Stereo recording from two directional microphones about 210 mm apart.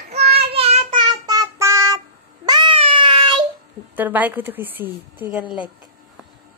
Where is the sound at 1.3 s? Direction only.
15° right (ahead or behind).